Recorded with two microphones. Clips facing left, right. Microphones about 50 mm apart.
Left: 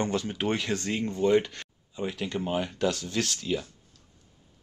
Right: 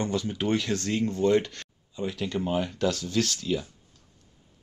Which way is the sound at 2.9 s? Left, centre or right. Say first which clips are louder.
Right 3 dB; left.